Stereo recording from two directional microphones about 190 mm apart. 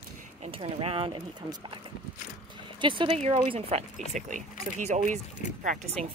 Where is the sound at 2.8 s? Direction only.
25° right (ahead or behind).